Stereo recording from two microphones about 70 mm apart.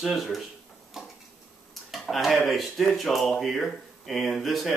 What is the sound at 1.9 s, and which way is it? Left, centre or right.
Speech, centre.